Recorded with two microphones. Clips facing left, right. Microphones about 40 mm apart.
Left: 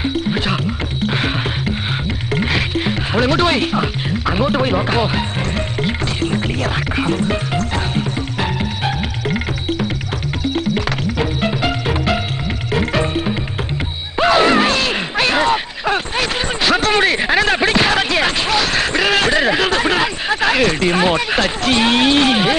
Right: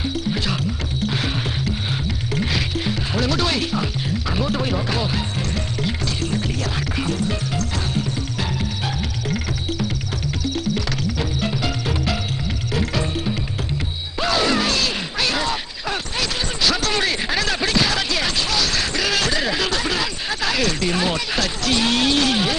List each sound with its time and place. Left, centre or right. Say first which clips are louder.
0.0 s music: left 5 dB; left
2.3 s music: left 6 dB; left
14.1 s a sound: left 7 dB; left